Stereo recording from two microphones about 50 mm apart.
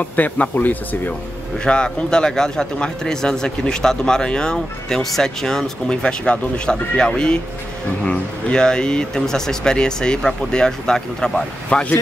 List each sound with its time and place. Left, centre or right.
0.0 s speech: left
1.6 s a man's voice: centre
11.7 s speech: left